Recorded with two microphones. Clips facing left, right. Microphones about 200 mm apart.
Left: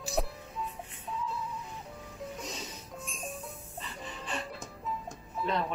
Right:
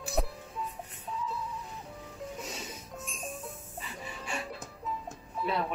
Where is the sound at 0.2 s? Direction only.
Centre (ahead or behind).